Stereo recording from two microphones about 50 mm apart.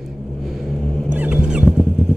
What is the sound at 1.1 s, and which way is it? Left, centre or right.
Wild animals, right.